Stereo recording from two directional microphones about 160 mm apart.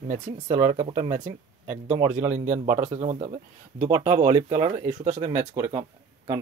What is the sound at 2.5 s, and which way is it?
Speech, 20° right (ahead or behind).